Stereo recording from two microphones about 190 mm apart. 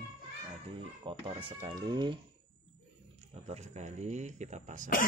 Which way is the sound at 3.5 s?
35° right (ahead or behind).